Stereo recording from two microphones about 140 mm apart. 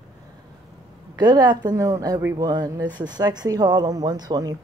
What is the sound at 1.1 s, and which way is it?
Speech, 30° right (ahead or behind).